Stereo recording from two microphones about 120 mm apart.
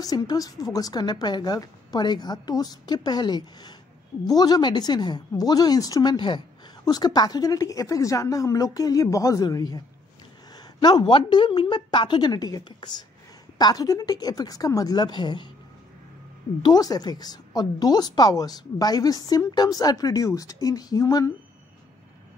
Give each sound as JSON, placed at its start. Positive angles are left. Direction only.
{"t": 0.0, "sound": "speech", "side_deg": 30}
{"t": 16.6, "sound": "speech", "side_deg": 35}